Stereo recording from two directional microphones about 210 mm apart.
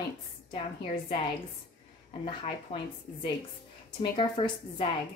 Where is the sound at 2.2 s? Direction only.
25° left (ahead or behind).